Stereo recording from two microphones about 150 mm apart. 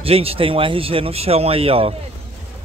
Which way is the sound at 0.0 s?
40° right (ahead or behind).